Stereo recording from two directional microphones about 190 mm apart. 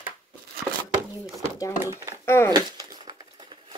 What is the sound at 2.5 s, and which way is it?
Crumpling, 20° right (ahead or behind).